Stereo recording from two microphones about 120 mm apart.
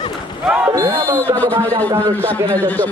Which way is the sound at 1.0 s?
15° left (ahead or behind).